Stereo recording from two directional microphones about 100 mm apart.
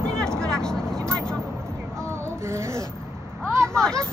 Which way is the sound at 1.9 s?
30° right (ahead or behind).